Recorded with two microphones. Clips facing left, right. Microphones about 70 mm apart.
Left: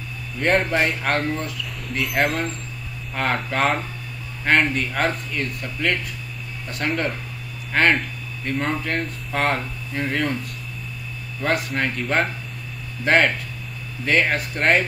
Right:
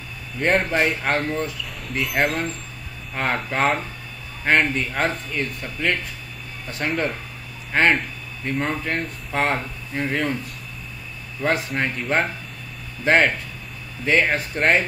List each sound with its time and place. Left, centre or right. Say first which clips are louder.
0.4 s speech: even; centre
11.7 s speech: even; centre